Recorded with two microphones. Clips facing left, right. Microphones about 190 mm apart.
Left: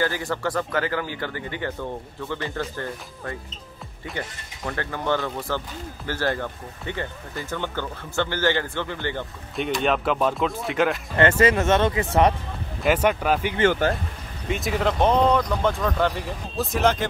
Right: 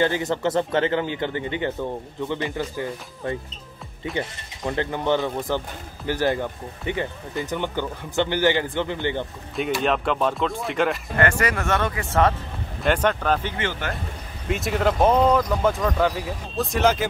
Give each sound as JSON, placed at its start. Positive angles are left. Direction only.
{"t": 0.0, "sound": "speech", "side_deg": -20}
{"t": 4.0, "sound": "speech", "side_deg": -20}
{"t": 9.6, "sound": "speech", "side_deg": 0}
{"t": 11.1, "sound": "speech", "side_deg": 25}
{"t": 12.8, "sound": "speech", "side_deg": 5}
{"t": 13.6, "sound": "speech", "side_deg": 40}
{"t": 14.5, "sound": "speech", "side_deg": 0}